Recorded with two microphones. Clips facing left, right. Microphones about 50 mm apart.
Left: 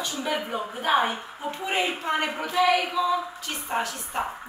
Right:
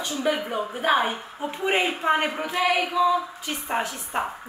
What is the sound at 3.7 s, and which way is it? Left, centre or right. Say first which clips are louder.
Speech: right 1 dB; centre.